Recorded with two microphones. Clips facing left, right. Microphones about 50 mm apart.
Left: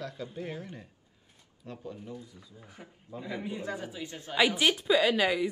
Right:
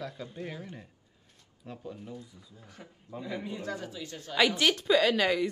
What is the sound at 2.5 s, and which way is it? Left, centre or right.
A woman's voice, centre.